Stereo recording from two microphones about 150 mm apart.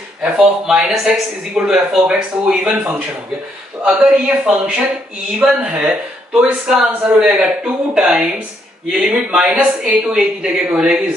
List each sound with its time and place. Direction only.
0.2 s speech: 5° right (ahead or behind)